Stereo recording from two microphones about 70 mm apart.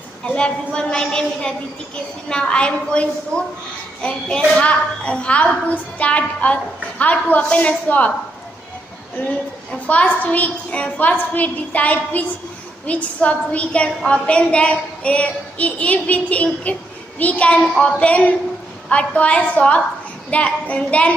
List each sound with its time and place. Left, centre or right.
0.3 s a woman's voice: centre
4.5 s a woman's voice: centre
9.8 s a woman's voice: centre